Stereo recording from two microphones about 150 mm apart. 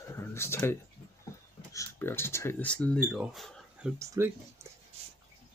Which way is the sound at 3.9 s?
20° right (ahead or behind).